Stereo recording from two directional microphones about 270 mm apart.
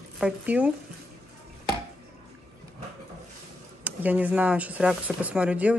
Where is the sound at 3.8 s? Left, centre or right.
Centre.